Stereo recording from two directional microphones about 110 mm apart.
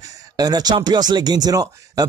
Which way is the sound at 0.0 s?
35° right (ahead or behind).